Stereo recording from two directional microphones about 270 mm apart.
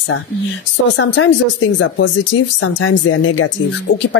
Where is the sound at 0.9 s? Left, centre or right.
Left.